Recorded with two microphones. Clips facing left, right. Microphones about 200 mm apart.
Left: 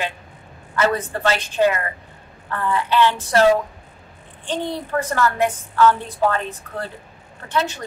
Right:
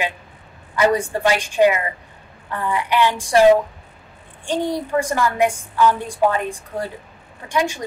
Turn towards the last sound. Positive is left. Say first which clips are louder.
# right 2 dB
turn(degrees=-10)  # may be behind; listen again after turning